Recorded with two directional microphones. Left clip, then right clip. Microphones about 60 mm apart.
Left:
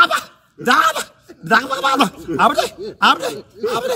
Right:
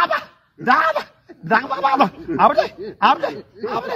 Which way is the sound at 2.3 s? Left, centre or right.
Left.